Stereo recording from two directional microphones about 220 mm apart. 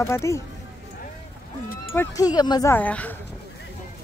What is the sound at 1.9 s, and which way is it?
Speech, 15° left (ahead or behind).